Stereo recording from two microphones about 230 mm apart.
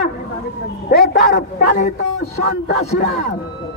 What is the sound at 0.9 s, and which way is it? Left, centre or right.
A man's voice, left.